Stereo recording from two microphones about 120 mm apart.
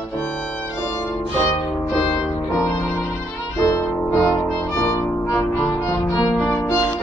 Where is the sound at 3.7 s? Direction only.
20° left (ahead or behind).